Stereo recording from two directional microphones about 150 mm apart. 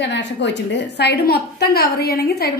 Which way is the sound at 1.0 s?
90° left.